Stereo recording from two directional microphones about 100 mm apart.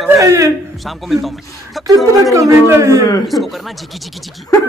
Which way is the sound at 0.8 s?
Centre (ahead or behind).